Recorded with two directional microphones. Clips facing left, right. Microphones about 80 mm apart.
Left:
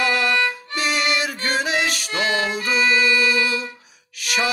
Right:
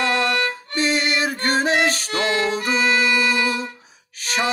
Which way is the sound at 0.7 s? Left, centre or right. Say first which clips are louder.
Right 2 dB; right.